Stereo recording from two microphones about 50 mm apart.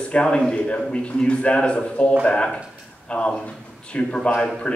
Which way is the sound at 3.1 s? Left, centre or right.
Left.